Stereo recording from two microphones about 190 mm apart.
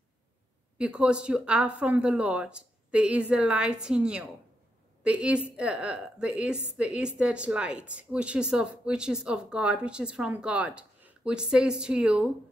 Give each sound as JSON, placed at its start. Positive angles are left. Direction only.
{"t": 0.7, "sound": "speech", "side_deg": -5}